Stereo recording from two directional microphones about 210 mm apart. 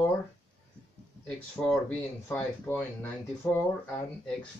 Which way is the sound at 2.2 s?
10° left (ahead or behind).